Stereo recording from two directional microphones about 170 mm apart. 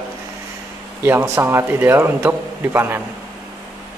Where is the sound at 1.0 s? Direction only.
15° right (ahead or behind).